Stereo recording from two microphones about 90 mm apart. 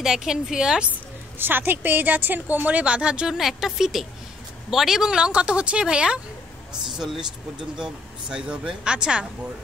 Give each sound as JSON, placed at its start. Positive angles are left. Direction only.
{"t": 0.0, "sound": "a woman's voice", "side_deg": -5}
{"t": 1.4, "sound": "a woman's voice", "side_deg": -25}
{"t": 7.8, "sound": "a woman's voice", "side_deg": -10}